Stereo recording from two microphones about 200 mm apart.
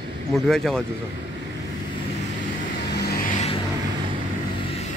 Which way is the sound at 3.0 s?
50° left (ahead or behind).